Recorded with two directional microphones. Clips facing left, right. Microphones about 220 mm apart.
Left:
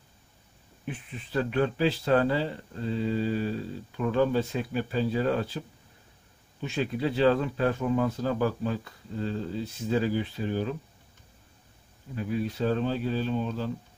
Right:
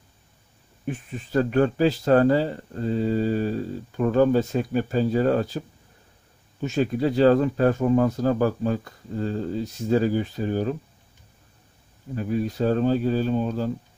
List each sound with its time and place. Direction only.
0.8 s speech: 45° right (ahead or behind)
6.6 s speech: 45° right (ahead or behind)
12.2 s speech: 45° right (ahead or behind)